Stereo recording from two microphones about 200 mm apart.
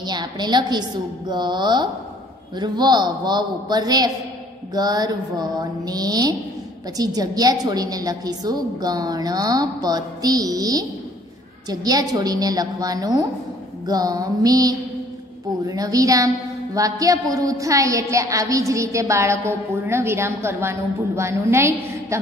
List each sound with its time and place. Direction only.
0.0 s a woman's voice: 20° right (ahead or behind)